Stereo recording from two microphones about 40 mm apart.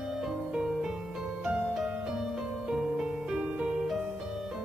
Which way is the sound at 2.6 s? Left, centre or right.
Centre.